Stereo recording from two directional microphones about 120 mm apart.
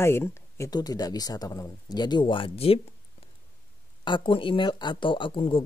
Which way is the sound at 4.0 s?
40° left (ahead or behind).